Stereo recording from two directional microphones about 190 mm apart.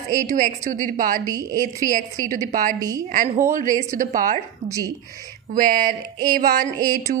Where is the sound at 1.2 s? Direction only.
20° right (ahead or behind).